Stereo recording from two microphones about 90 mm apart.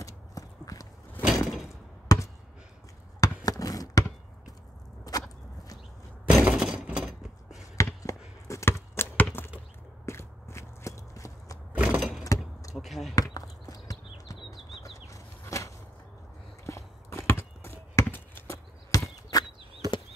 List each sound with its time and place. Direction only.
0.0 s clip-clop: 40° left (ahead or behind)
1.2 s door: 5° right (ahead or behind)
2.1 s basketball bounce: 40° left (ahead or behind)
3.4 s a sound: 40° left (ahead or behind)
5.1 s whip: 40° left (ahead or behind)
6.4 s shatter: 10° right (ahead or behind)
7.7 s a sound: 35° left (ahead or behind)
10.0 s walk: 30° left (ahead or behind)
11.7 s a sound: 15° right (ahead or behind)
12.3 s power windows: 40° left (ahead or behind)
12.7 s basketball bounce: centre (ahead or behind)
13.1 s a sound: 40° left (ahead or behind)
19.8 s chop: 45° right (ahead or behind)